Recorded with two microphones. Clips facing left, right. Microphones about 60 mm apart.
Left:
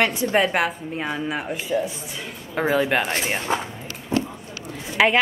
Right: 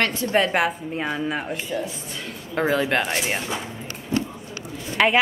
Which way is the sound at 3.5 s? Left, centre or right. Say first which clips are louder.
Left 5 dB; left.